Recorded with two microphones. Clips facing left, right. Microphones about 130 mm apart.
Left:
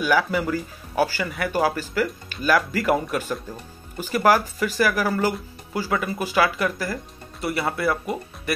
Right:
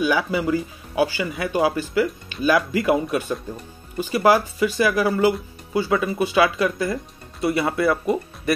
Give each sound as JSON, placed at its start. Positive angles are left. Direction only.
{"t": 0.0, "sound": "speech", "side_deg": -20}
{"t": 4.2, "sound": "speech", "side_deg": -20}